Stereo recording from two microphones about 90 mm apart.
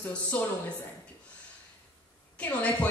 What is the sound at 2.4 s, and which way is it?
Speech, 15° left (ahead or behind).